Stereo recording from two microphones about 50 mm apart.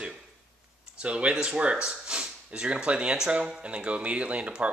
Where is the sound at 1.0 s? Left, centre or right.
Right.